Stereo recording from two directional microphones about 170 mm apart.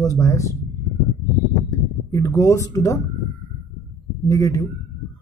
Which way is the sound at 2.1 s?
20° left (ahead or behind).